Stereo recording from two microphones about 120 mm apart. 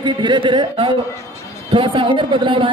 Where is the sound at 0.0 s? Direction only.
40° right (ahead or behind).